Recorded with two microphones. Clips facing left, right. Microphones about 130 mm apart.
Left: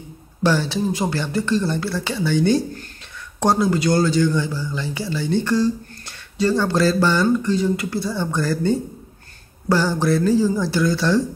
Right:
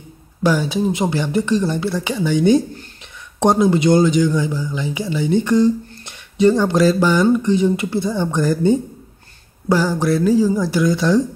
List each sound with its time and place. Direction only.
0.4 s speech: 10° right (ahead or behind)